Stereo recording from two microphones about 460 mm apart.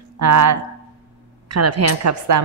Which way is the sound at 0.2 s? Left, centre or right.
Right.